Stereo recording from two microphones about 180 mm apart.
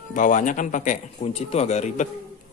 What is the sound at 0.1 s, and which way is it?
Speech, 45° left (ahead or behind).